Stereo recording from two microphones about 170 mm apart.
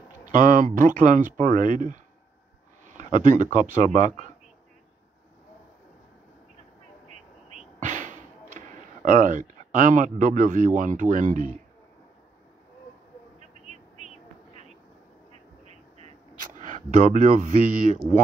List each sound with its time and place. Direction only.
0.2 s speech: 50° right (ahead or behind)
3.0 s speech: 50° right (ahead or behind)
7.5 s a sound: 50° right (ahead or behind)
13.4 s vehicle: 45° right (ahead or behind)
16.6 s speech: 50° right (ahead or behind)